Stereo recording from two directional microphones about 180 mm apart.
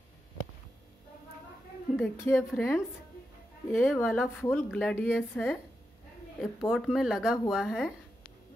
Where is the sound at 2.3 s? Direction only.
10° left (ahead or behind).